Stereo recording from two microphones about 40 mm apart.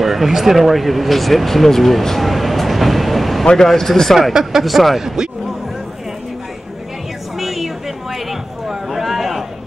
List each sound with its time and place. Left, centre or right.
0.0 s speech: centre
4.3 s speech: centre
7.3 s a sound: centre